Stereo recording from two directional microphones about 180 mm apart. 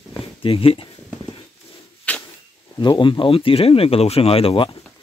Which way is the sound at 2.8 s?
25° left (ahead or behind).